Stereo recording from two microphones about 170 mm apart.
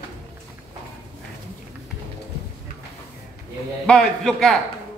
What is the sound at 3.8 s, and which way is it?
Speech, 5° left (ahead or behind).